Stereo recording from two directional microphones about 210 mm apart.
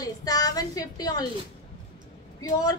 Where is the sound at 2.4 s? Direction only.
20° left (ahead or behind).